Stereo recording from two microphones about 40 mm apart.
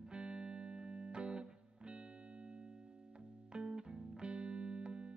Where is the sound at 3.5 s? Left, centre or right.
Right.